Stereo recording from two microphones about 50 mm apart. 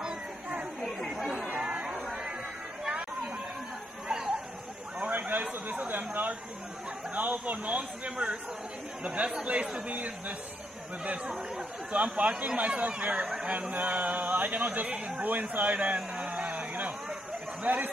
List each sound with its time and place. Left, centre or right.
0.7 s chatter: centre
1.5 s chatter: right
5.2 s a sound: right
9.0 s a man's voice: right
11.9 s a man's voice: right
14.7 s speech: right
15.2 s a sound: right
17.6 s speech: right